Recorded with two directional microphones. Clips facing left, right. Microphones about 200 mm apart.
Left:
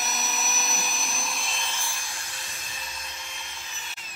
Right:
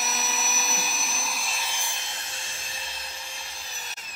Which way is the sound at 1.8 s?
20° right (ahead or behind).